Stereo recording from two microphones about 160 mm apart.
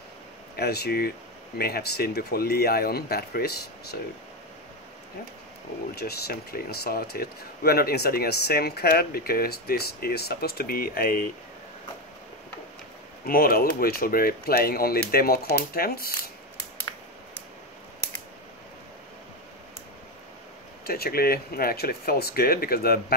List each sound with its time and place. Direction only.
0.6 s speech: 85° left
5.9 s speech: 80° left
13.2 s speech: 65° left (ahead or behind)
20.8 s speech: 70° left (ahead or behind)